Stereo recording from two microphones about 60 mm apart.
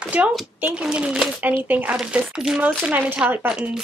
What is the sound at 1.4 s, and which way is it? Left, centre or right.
Speech, right.